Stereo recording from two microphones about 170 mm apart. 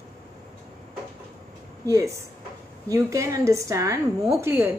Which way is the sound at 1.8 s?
20° right (ahead or behind).